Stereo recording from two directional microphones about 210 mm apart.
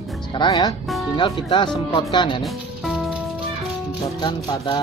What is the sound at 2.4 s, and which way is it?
Music, centre (ahead or behind).